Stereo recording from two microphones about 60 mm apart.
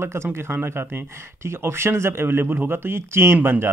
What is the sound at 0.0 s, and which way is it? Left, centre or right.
Speech, right.